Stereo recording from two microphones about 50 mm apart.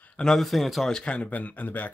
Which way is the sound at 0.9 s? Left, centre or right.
Left.